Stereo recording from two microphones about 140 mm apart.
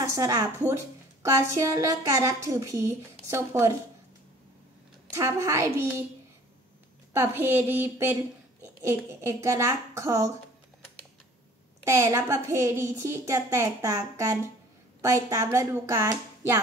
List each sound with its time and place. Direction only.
0.0 s a woman's voice: 25° right (ahead or behind)
5.1 s a woman's voice: 20° right (ahead or behind)
7.2 s a woman's voice: 15° right (ahead or behind)
11.8 s a woman's voice: 20° right (ahead or behind)